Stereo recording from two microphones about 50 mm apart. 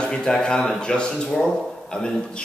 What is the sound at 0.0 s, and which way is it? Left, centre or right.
Speech, centre.